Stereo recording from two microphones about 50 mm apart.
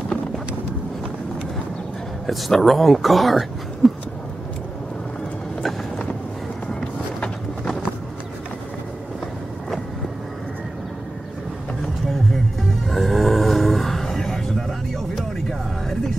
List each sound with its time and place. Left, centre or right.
2.2 s speech: centre
5.6 s music: centre
6.7 s run: centre
12.8 s a sound: centre